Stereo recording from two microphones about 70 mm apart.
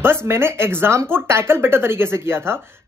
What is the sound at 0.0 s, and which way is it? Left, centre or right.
Speech, right.